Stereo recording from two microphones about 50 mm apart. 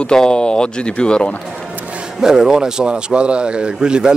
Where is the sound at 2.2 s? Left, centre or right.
Centre.